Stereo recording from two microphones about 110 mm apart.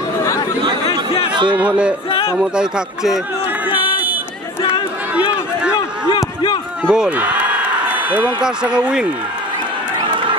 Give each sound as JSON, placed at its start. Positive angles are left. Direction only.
{"t": 0.8, "sound": "a sound", "side_deg": 60}
{"t": 1.5, "sound": "speech", "side_deg": -10}
{"t": 5.1, "sound": "run", "side_deg": -10}
{"t": 6.9, "sound": "speech", "side_deg": -10}